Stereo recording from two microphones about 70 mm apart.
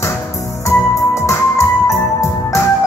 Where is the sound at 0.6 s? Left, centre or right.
Left.